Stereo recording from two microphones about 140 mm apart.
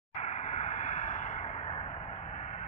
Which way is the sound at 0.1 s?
55° left (ahead or behind).